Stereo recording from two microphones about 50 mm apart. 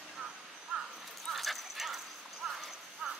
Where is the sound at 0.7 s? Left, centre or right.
Centre.